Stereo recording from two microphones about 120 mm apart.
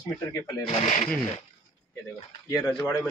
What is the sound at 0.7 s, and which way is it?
Speech, 90° left.